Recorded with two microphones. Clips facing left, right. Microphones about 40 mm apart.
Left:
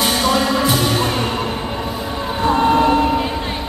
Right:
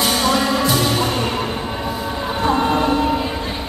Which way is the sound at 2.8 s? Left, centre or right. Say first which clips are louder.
Left 3 dB; centre.